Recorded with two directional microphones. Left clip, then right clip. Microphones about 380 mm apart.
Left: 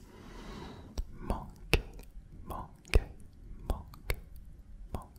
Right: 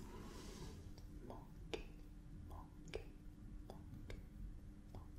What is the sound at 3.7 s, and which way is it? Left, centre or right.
Whispering, left.